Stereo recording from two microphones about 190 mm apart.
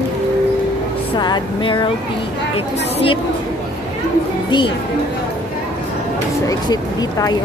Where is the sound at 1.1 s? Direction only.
25° left (ahead or behind).